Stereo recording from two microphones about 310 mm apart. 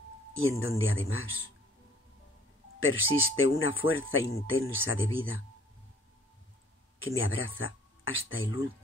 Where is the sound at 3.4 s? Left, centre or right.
Left.